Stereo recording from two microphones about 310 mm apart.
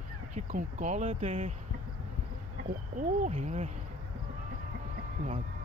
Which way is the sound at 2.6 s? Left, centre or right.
Right.